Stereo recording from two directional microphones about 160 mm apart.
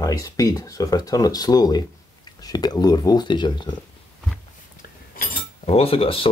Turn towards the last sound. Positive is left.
turn(degrees=35)  # may be behind; listen again after turning